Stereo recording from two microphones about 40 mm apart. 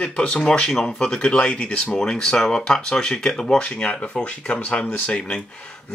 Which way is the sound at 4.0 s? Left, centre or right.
Left.